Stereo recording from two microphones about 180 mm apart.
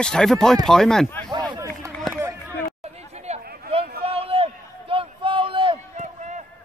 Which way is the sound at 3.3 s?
35° right (ahead or behind).